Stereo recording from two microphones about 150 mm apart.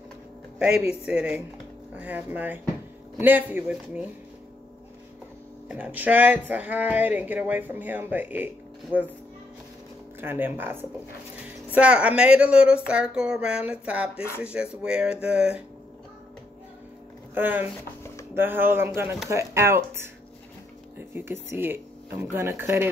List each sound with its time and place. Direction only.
0.6 s speech: 5° right (ahead or behind)
5.7 s speech: 10° right (ahead or behind)
10.2 s speech: 15° right (ahead or behind)
17.3 s speech: 15° right (ahead or behind)
21.1 s speech: 15° right (ahead or behind)